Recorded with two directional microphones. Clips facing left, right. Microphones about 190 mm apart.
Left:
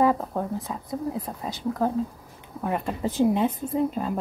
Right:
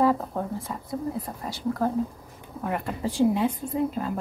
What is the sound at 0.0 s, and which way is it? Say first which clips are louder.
A woman's voice: left 1 dB; 15° left (ahead or behind).